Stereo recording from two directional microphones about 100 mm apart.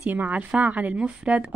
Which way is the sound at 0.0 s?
15° right (ahead or behind).